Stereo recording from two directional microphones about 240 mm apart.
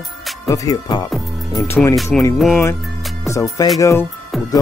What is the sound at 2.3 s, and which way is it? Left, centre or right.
Speech, centre.